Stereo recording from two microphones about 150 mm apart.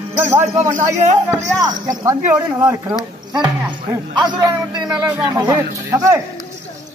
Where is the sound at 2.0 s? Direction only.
15° right (ahead or behind).